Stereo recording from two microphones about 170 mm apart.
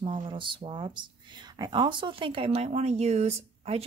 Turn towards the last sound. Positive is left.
turn(degrees=-40)  # may be behind; listen again after turning